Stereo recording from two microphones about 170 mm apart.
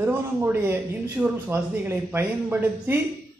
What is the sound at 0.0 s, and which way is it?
Speech, 15° right (ahead or behind).